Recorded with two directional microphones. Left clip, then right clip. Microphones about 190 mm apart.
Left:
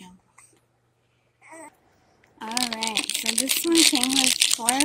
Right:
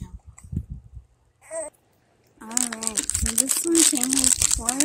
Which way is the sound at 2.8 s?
5° left (ahead or behind).